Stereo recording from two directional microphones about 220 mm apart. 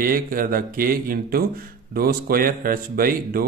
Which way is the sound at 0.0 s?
40° right (ahead or behind).